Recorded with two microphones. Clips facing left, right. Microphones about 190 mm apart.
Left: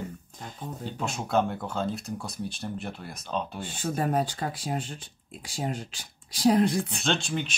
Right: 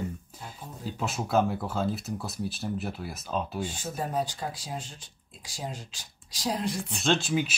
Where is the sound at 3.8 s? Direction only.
65° left (ahead or behind).